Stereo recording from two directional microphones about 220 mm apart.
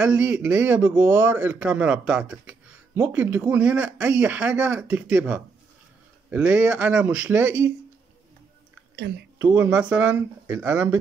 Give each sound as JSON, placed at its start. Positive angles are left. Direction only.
{"t": 0.0, "sound": "a man's voice", "side_deg": -5}
{"t": 8.9, "sound": "speech", "side_deg": -50}
{"t": 9.4, "sound": "a man's voice", "side_deg": -5}